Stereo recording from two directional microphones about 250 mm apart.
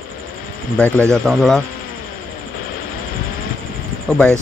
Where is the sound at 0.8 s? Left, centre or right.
Centre.